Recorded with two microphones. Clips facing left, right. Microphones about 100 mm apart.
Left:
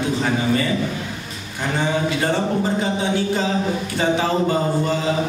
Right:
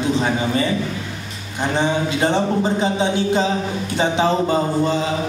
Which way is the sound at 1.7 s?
20° right (ahead or behind).